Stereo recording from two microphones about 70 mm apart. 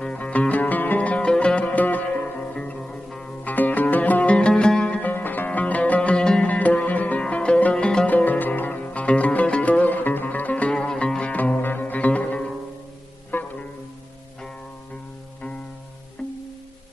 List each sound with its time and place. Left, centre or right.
0.0 s music: centre
2.5 s music: centre
3.4 s music: left; by 5.0 s centre
5.0 s music: left
8.1 s music: left
16.2 s music: centre